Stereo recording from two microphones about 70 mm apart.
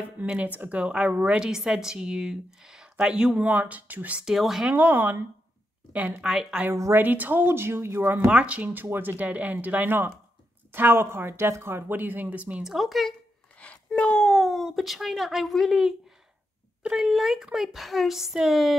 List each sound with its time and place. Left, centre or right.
0.0 s speech: right
1.4 s a woman's voice: centre; by 4.2 s right
4.2 s speech: centre
4.6 s speech: right
6.2 s speech: centre
6.7 s speech: right
7.0 s speech: right
8.3 s speech: centre
9.2 s speech: right
12.6 s speech: centre
13.6 s a woman's voice: centre